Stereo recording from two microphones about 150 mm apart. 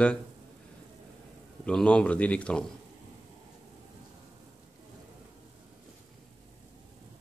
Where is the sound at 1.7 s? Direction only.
5° left (ahead or behind).